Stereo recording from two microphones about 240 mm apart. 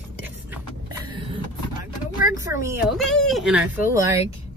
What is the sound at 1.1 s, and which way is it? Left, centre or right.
Vehicle, right.